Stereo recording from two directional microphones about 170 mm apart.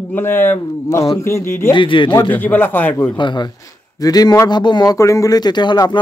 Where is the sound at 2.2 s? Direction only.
10° left (ahead or behind).